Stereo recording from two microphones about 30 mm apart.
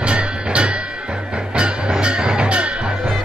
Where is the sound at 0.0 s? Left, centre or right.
Right.